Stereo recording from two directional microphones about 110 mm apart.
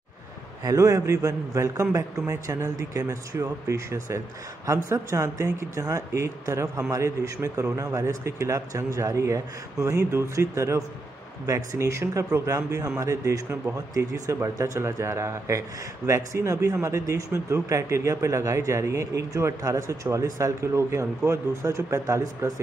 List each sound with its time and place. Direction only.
0.7 s speech: 30° right (ahead or behind)